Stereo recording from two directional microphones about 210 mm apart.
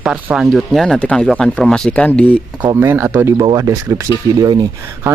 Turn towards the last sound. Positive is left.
turn(degrees=-15)  # may be behind; listen again after turning